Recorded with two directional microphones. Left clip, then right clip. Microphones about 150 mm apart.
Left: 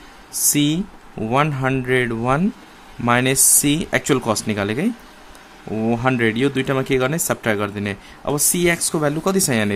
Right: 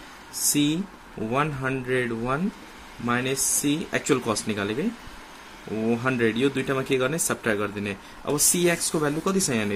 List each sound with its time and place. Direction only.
0.5 s speech: 45° left (ahead or behind)
3.1 s speech: 65° left (ahead or behind)
4.0 s speech: 45° left (ahead or behind)
5.9 s speech: 45° left (ahead or behind)